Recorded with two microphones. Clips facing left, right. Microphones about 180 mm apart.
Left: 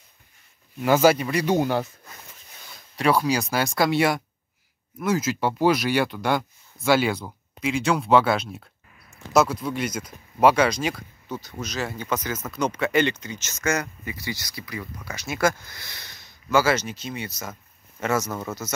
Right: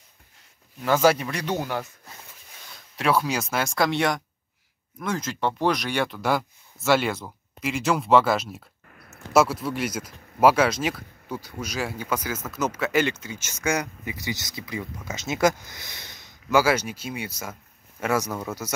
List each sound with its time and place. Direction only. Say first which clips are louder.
0.8 s speech: left 2 dB; 5° left (ahead or behind)
1.6 s speech: left 6 dB; 30° left (ahead or behind)
3.0 s speech: left 2 dB; centre (ahead or behind)
8.9 s a sound: right 7 dB; 55° right (ahead or behind)
9.3 s speech: even; 5° right (ahead or behind)